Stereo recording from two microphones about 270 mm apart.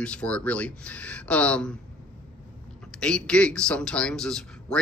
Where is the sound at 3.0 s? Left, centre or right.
Centre.